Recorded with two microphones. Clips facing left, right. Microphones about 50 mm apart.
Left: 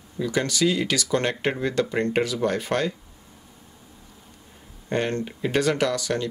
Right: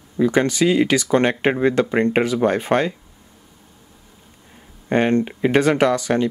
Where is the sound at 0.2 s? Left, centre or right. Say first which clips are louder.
Right 6 dB; right.